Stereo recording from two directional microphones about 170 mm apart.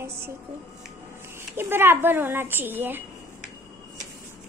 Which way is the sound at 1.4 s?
15° right (ahead or behind).